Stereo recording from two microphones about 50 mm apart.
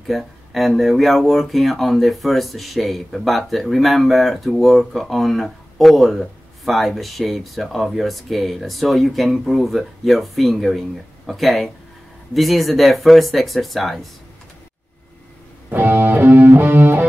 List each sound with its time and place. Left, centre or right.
0.0 s speech: centre
15.8 s music: right